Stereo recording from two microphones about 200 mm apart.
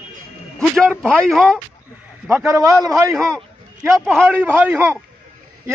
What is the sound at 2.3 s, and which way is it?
Speech, 15° right (ahead or behind).